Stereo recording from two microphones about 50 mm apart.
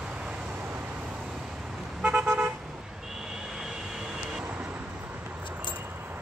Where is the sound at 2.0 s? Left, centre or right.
Right.